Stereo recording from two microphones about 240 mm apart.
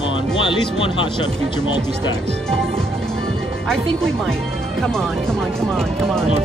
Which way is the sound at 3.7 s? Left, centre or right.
Centre.